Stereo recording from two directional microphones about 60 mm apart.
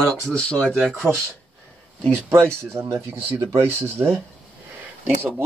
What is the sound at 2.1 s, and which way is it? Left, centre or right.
Speech, right.